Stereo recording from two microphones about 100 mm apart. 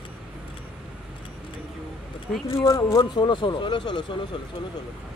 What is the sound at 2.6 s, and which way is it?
Speech, 35° left (ahead or behind).